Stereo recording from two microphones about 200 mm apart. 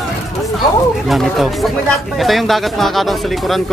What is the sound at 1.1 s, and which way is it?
Speech, centre (ahead or behind).